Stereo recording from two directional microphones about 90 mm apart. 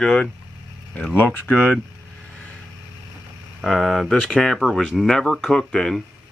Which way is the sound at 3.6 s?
Centre (ahead or behind).